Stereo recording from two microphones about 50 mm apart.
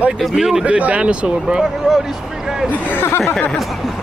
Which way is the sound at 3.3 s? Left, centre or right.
Left.